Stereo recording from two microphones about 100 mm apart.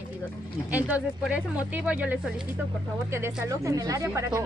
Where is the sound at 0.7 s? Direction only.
15° right (ahead or behind).